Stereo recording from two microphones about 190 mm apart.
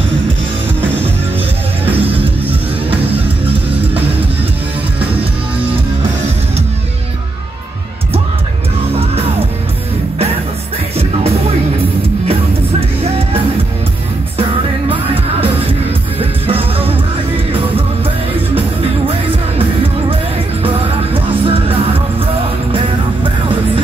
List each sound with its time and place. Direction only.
16.2 s music: 30° right (ahead or behind)
20.6 s music: 30° right (ahead or behind)